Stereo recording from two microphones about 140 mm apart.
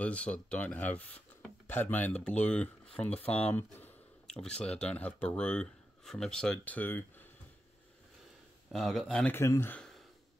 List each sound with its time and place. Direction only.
0.0 s speech: 10° left (ahead or behind)
8.7 s speech: centre (ahead or behind)
9.3 s speech: 20° left (ahead or behind)